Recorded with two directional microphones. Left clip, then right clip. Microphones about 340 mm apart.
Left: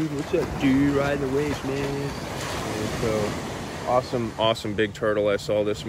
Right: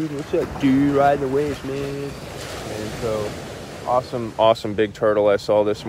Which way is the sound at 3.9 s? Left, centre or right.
Centre.